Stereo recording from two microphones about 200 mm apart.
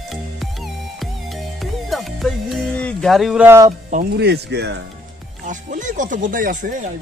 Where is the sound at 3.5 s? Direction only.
15° right (ahead or behind).